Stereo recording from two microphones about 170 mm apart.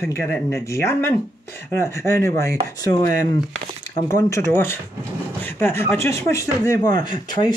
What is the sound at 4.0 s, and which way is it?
Speech, 15° left (ahead or behind).